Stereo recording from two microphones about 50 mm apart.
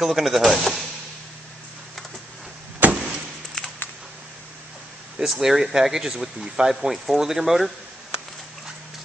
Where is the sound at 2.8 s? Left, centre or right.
Right.